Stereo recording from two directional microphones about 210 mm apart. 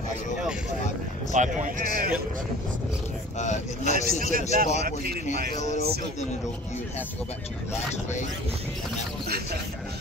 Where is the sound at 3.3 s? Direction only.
35° left (ahead or behind).